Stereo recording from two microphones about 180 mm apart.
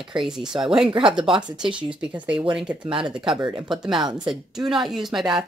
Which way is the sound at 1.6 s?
5° right (ahead or behind).